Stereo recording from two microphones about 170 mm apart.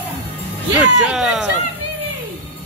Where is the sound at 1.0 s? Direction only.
5° right (ahead or behind).